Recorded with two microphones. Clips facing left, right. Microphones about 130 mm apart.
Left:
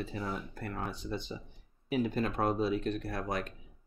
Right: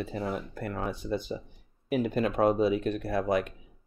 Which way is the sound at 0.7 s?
55° right (ahead or behind).